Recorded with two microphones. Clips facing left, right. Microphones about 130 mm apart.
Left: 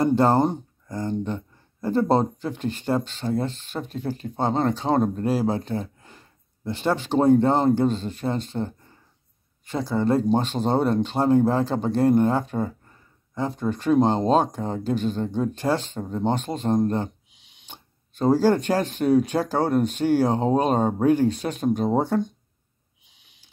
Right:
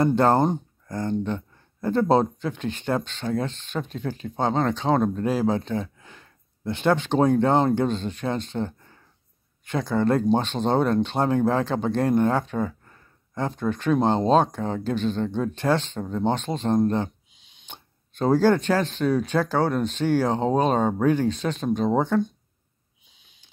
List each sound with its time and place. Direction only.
0.0 s speech: 5° left (ahead or behind)
9.8 s speech: 5° left (ahead or behind)